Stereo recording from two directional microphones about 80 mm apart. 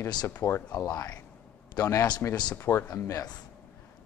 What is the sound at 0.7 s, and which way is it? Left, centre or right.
A man's voice, left.